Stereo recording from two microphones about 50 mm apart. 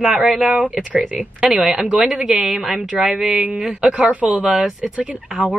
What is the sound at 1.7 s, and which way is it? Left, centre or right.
A woman's voice, right.